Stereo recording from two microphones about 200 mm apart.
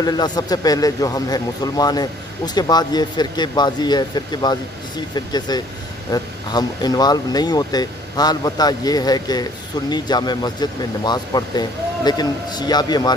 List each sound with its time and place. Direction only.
0.0 s speech: 20° left (ahead or behind)